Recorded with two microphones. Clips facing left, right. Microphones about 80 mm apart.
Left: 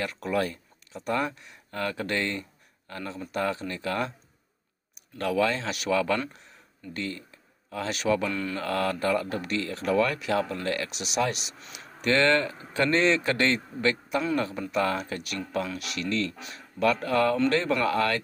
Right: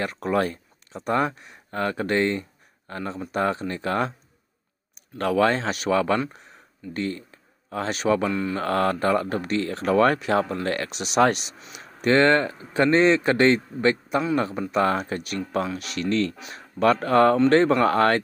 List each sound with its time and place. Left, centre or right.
0.0 s speech: right
5.1 s speech: right
8.3 s a man's voice: centre
8.5 s speech: right
11.7 s a man's voice: right